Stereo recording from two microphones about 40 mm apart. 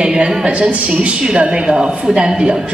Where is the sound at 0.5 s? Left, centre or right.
Right.